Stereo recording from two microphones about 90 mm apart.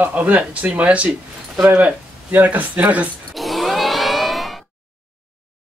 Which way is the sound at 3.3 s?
Centre (ahead or behind).